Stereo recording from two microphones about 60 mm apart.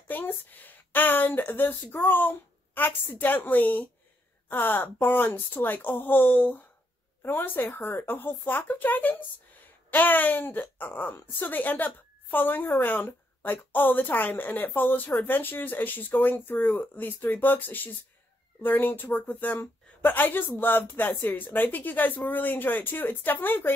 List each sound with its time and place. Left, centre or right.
0.1 s a woman's voice: left